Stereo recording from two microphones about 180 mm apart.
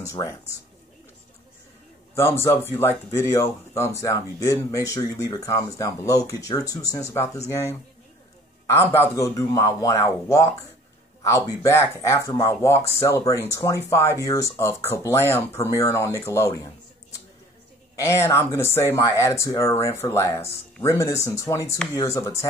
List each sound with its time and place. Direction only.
0.0 s speech: 15° left (ahead or behind)
2.1 s speech: 15° left (ahead or behind)
17.9 s speech: 15° left (ahead or behind)